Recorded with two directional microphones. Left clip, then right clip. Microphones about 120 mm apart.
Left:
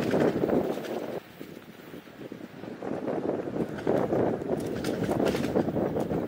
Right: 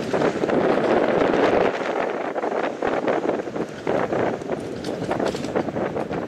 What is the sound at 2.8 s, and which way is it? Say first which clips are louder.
Wind noise: right 6 dB; 30° right (ahead or behind).